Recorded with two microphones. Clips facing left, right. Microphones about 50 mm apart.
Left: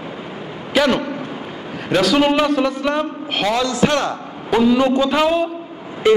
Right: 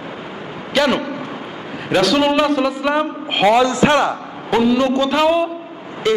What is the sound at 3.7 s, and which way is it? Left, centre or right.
Speech, right.